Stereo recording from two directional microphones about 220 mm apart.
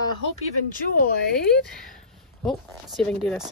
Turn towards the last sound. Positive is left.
turn(degrees=5)  # may be behind; listen again after turning